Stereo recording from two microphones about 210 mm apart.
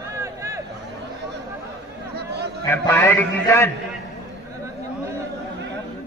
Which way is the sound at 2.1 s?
50° right (ahead or behind).